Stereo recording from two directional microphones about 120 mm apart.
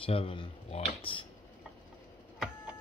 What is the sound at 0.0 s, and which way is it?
Speech, 45° left (ahead or behind).